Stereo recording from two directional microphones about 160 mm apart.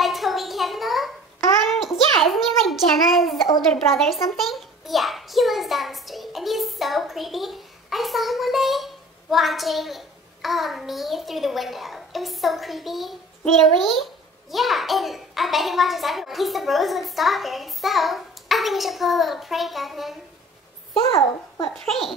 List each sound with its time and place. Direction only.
0.0 s a sound: centre (ahead or behind)
3.7 s a child's voice: centre (ahead or behind)
21.1 s a child's voice: 35° left (ahead or behind)